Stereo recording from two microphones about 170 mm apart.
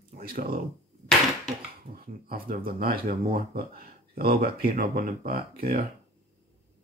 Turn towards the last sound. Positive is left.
turn(degrees=-60)  # may be behind; listen again after turning